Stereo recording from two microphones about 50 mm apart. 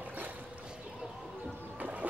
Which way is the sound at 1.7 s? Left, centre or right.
Right.